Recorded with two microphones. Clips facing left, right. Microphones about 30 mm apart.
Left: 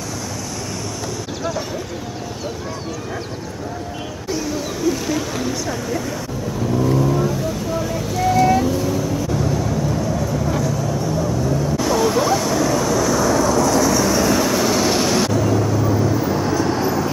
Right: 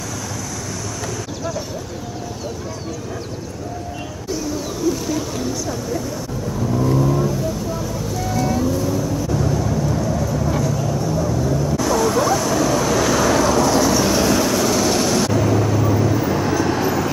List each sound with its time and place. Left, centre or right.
4.3 s speech: left
6.9 s vehicle: left
11.8 s music: left
13.7 s vehicle: right
14.0 s vehicle: right
14.5 s vehicle: centre